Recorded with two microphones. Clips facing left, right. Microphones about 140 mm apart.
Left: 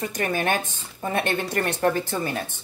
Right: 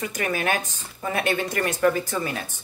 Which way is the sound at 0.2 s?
30° left (ahead or behind).